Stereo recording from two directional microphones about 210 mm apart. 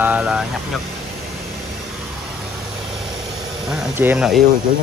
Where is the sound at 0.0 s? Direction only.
5° right (ahead or behind).